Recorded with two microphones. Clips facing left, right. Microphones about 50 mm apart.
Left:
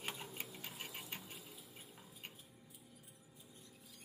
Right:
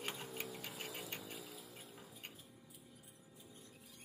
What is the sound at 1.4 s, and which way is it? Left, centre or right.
Music, right.